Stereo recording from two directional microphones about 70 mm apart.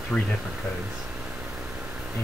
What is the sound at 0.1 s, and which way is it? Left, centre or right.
Speech, centre.